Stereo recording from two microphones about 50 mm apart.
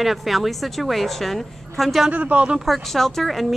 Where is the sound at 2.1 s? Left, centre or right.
Right.